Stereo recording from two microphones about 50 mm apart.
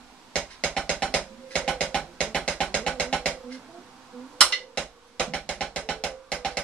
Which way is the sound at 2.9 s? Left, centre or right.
Centre.